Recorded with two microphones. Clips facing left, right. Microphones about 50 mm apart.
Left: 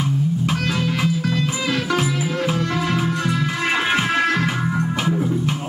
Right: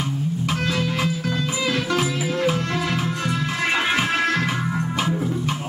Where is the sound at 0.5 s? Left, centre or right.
Centre.